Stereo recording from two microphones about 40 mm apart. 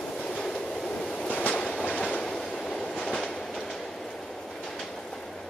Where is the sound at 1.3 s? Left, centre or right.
Left.